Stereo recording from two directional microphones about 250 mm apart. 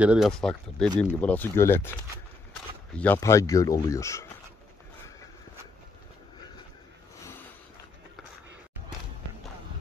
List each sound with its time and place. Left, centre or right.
0.0 s speech: centre
3.0 s speech: centre